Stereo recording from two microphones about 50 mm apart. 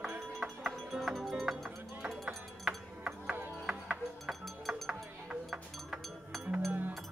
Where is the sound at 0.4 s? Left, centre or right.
Centre.